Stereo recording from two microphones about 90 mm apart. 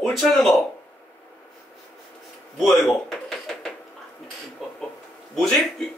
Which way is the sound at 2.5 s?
Centre (ahead or behind).